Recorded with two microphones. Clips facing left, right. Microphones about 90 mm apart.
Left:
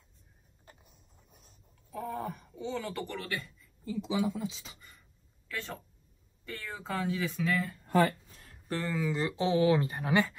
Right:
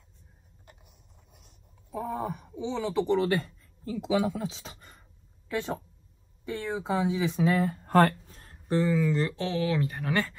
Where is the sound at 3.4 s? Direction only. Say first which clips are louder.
Right 4 dB; 65° right (ahead or behind).